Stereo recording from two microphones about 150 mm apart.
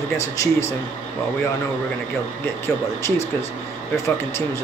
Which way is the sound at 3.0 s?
20° left (ahead or behind).